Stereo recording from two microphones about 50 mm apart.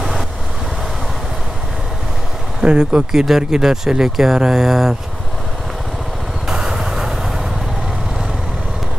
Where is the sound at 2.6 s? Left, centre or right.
Centre.